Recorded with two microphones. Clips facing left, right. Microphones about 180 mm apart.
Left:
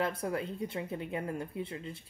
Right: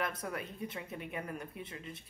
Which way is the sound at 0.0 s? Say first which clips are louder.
Left 5 dB; 30° left (ahead or behind).